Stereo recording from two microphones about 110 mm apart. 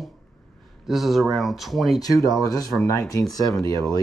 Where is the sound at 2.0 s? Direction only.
35° left (ahead or behind).